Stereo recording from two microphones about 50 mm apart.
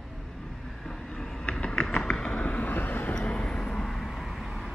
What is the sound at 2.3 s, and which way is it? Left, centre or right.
Vehicle, left.